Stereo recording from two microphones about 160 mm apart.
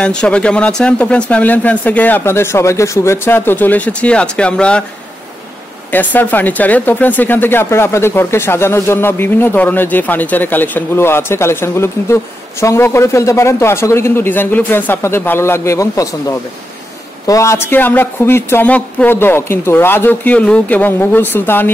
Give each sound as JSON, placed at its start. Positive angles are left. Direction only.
{"t": 0.0, "sound": "speech", "side_deg": 5}
{"t": 5.9, "sound": "speech", "side_deg": 10}